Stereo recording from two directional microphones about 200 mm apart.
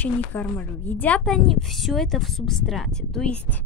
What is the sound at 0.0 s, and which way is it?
A woman's voice, 10° left (ahead or behind).